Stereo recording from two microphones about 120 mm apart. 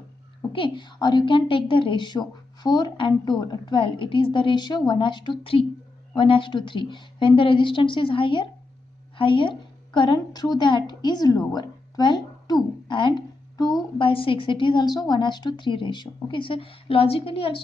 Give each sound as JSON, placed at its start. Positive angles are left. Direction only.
{"t": 0.5, "sound": "a woman's voice", "side_deg": 45}
{"t": 13.9, "sound": "a woman's voice", "side_deg": 45}